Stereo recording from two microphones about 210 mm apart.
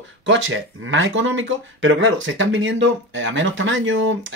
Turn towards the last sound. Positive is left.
turn(degrees=-65)  # may be behind; listen again after turning